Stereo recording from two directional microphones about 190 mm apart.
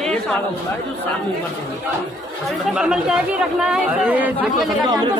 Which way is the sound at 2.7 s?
Centre (ahead or behind).